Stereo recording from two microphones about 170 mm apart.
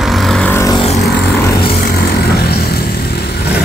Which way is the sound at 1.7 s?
60° left (ahead or behind).